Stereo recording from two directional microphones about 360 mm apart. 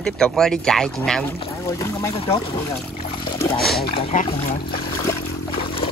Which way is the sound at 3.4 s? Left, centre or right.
Centre.